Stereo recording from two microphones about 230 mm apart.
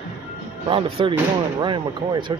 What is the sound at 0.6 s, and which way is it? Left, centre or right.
Speech, right.